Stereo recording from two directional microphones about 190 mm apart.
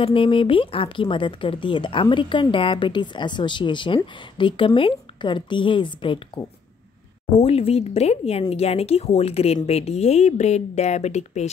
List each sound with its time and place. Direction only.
0.0 s speech: 30° left (ahead or behind)